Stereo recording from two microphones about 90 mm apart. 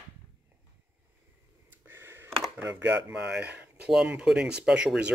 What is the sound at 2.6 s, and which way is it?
Speech, 25° right (ahead or behind).